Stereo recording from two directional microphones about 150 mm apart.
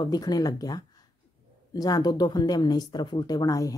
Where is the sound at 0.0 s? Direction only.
25° left (ahead or behind).